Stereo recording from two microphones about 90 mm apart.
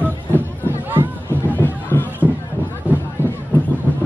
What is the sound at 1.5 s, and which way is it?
Music, 20° left (ahead or behind).